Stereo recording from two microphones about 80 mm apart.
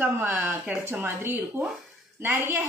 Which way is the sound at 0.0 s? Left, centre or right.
Right.